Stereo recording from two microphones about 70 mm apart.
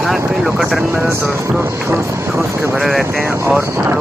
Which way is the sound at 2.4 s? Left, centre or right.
Right.